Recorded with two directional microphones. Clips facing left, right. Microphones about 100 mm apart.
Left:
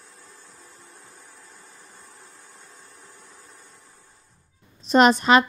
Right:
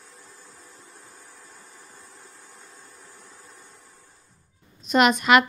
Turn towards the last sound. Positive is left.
turn(degrees=30)  # may be behind; listen again after turning